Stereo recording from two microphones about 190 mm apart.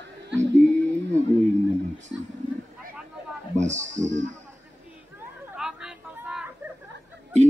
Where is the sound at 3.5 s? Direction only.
40° right (ahead or behind).